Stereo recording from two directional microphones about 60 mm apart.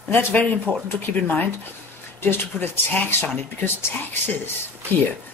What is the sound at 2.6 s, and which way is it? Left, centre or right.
Speech, left.